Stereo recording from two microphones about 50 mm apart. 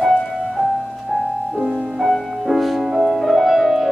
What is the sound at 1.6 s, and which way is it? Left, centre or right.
Music, centre.